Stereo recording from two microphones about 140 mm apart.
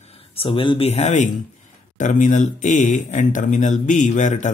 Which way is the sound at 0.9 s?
55° left (ahead or behind).